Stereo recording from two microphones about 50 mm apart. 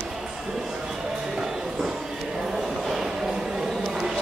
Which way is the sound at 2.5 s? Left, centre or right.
Centre.